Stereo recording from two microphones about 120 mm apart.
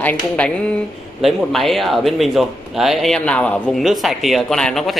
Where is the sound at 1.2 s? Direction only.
Centre (ahead or behind).